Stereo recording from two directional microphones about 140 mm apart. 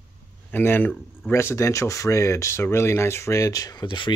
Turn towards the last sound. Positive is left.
turn(degrees=35)  # may be behind; listen again after turning